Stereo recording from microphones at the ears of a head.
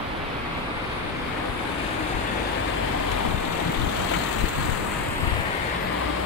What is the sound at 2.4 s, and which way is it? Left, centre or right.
Vehicle, left.